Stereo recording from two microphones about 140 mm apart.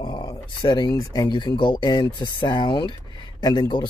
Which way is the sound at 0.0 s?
30° left (ahead or behind).